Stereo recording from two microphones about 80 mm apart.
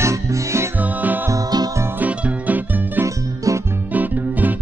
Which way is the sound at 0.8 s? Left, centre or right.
Right.